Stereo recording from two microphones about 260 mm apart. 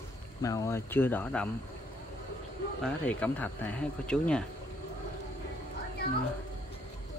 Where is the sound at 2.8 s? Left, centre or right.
Centre.